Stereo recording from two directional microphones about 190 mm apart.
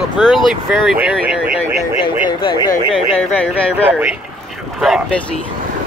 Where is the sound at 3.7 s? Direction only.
5° right (ahead or behind).